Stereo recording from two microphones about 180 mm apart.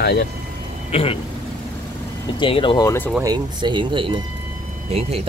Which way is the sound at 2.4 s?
30° left (ahead or behind).